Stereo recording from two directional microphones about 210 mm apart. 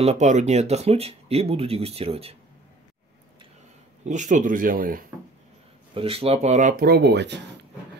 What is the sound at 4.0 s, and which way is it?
Speech, 35° right (ahead or behind).